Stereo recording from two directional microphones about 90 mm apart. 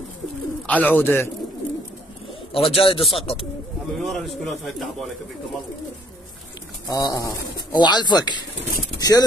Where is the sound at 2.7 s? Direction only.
90° left.